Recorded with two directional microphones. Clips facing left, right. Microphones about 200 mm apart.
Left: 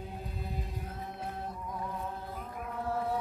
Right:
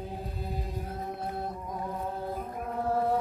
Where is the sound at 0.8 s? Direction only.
35° right (ahead or behind).